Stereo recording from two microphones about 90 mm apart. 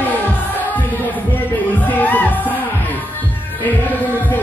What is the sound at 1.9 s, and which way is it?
Music, 20° left (ahead or behind).